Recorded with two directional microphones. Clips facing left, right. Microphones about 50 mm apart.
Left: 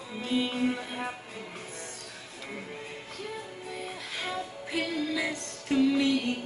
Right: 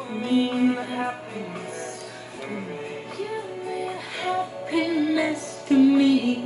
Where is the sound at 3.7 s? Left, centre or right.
Centre.